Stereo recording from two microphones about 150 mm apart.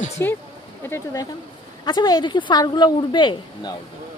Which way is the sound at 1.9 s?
30° left (ahead or behind).